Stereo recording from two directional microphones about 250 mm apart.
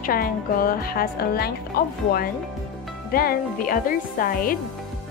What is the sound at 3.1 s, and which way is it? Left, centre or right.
Speech, left.